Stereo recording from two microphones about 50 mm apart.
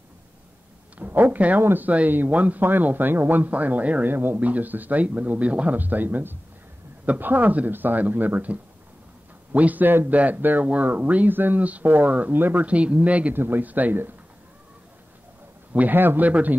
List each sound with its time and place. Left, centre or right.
0.9 s speech: right
1.6 s speech: right
1.9 s speech: right
4.1 s speech: right
4.4 s speech: right
12.4 s speech: right
12.6 s speech: right
13.3 s speech: right
13.7 s speech: right
15.9 s speech: right